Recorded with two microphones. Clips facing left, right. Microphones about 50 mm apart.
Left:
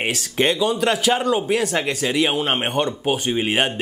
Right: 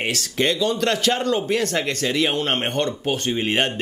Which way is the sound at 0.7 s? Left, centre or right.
Centre.